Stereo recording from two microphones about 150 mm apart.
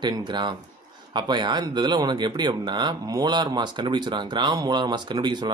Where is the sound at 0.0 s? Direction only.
30° right (ahead or behind).